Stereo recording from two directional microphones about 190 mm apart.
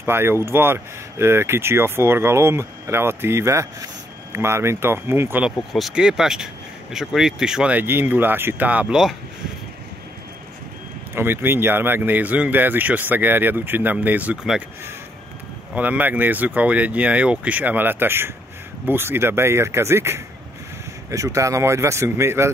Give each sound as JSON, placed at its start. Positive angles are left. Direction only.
{"t": 0.0, "sound": "speech", "side_deg": -10}
{"t": 5.6, "sound": "speech", "side_deg": 0}
{"t": 11.1, "sound": "speech", "side_deg": -10}
{"t": 15.7, "sound": "speech", "side_deg": -10}